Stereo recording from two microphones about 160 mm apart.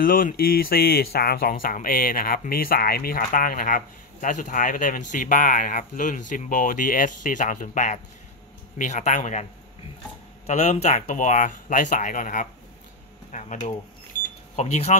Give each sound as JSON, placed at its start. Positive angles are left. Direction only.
{"t": 0.0, "sound": "speech", "side_deg": 60}
{"t": 14.1, "sound": "a sound", "side_deg": 55}
{"t": 14.5, "sound": "speech", "side_deg": 45}